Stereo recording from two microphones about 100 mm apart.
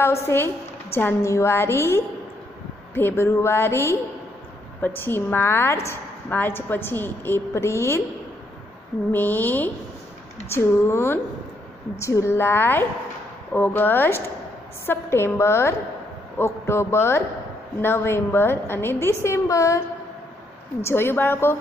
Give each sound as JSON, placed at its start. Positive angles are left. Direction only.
{"t": 0.0, "sound": "a woman's voice", "side_deg": 25}
{"t": 9.1, "sound": "a woman's voice", "side_deg": 20}
{"t": 20.8, "sound": "a woman's voice", "side_deg": 25}